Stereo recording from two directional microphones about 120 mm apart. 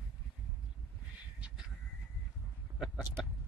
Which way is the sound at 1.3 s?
10° right (ahead or behind).